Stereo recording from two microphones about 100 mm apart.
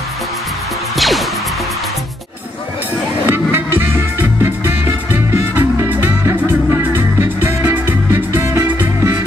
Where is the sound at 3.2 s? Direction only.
20° right (ahead or behind).